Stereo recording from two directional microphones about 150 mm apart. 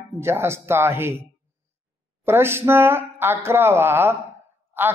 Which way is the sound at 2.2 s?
15° right (ahead or behind).